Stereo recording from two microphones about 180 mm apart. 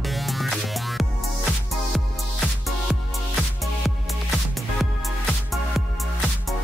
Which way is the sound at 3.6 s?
Centre (ahead or behind).